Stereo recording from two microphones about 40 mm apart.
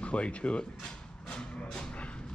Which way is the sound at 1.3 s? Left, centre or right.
Left.